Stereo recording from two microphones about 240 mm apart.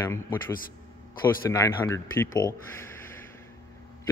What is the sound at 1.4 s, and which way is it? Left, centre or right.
Speech, centre.